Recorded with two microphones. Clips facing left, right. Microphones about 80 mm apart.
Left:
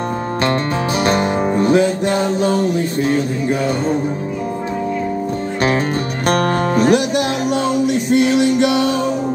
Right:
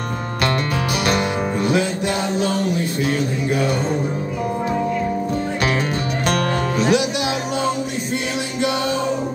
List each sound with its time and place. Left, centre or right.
1.0 s music: left
6.2 s music: left
8.1 s music: left